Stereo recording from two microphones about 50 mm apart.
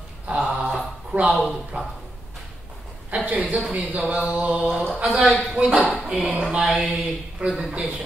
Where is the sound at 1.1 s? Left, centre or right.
Right.